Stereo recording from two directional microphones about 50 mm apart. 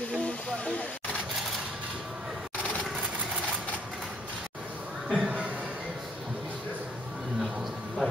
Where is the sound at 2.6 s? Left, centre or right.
Left.